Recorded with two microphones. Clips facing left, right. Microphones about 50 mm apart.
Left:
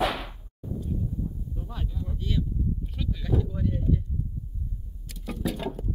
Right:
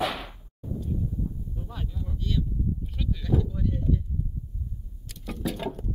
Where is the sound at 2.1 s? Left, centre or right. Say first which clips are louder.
Even; centre.